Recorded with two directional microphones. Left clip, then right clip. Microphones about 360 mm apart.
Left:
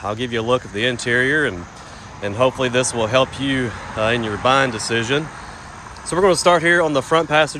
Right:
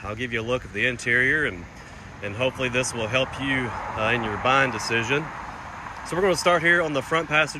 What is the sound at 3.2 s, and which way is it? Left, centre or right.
Speech, left.